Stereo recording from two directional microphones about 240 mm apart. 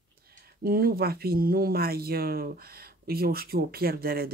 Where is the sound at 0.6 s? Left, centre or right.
Right.